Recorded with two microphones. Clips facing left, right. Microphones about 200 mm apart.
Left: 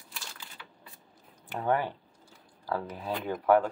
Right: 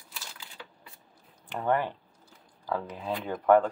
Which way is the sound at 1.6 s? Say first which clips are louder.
Right 1 dB; 10° left (ahead or behind).